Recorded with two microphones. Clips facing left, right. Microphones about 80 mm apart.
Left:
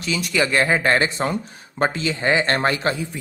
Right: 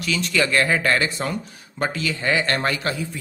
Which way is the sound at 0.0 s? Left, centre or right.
Centre.